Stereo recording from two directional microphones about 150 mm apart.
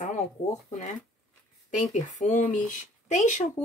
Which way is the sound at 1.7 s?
55° left (ahead or behind).